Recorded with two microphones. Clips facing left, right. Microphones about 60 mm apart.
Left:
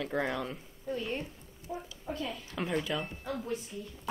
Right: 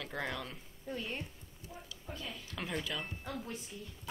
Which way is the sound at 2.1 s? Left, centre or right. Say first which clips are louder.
Left 8 dB; left.